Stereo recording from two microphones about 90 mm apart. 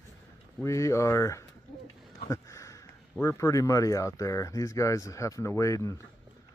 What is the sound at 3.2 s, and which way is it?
Speech, 35° left (ahead or behind).